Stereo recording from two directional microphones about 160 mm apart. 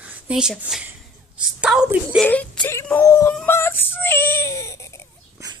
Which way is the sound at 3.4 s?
15° left (ahead or behind).